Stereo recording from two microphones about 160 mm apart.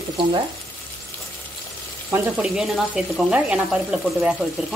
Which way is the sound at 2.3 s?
5° right (ahead or behind).